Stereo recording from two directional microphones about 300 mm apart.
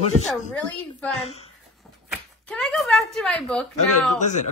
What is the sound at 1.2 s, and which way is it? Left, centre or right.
Speech, left.